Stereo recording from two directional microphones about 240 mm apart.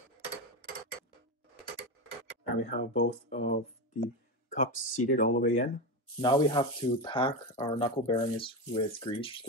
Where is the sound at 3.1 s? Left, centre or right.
Left.